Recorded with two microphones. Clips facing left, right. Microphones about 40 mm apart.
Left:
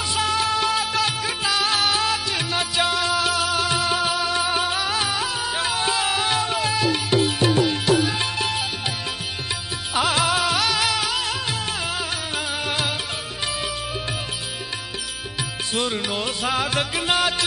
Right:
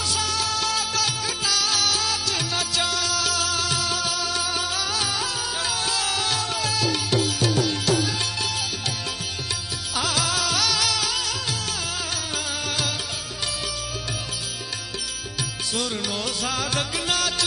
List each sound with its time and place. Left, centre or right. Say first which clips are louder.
0.1 s music: left 6 dB; left
9.9 s music: left 5 dB; left
12.6 s music: left 2 dB; left
15.7 s music: left 4 dB; left